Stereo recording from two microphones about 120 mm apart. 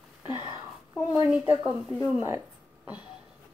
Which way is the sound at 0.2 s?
40° left (ahead or behind).